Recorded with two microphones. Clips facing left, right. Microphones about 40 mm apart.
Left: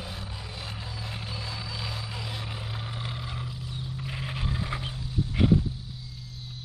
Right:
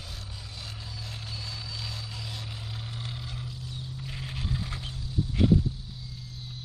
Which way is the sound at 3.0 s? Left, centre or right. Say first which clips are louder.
Left 3 dB; centre.